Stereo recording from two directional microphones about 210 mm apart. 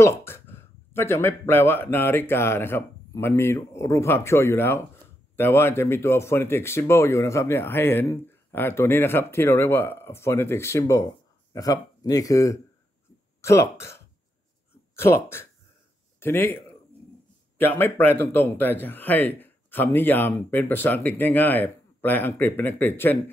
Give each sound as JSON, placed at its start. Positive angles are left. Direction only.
{"t": 0.0, "sound": "speech", "side_deg": 10}